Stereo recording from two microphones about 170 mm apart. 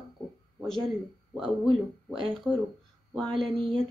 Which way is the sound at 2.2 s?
Centre (ahead or behind).